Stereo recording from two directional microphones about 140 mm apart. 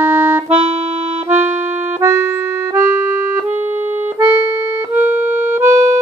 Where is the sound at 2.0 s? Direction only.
20° right (ahead or behind).